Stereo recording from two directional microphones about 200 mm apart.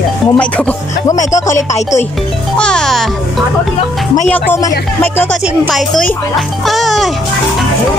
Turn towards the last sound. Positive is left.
turn(degrees=0)  # may be behind; listen again after turning